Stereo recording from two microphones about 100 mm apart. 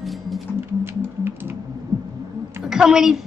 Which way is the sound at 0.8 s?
25° right (ahead or behind).